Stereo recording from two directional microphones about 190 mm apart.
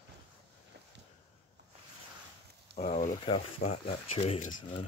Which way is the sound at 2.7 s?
35° left (ahead or behind).